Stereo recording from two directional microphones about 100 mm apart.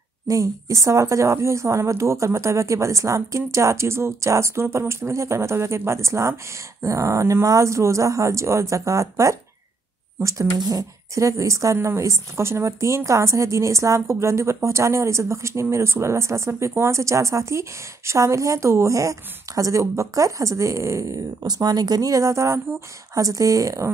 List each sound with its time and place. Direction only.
0.3 s a woman's voice: 30° right (ahead or behind)
10.6 s a woman's voice: 40° right (ahead or behind)